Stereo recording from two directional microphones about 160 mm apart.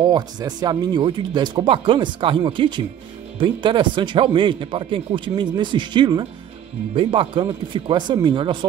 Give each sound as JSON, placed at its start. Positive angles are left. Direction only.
{"t": 0.0, "sound": "speech", "side_deg": -25}